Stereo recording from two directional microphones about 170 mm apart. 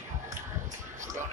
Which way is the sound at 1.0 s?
45° right (ahead or behind).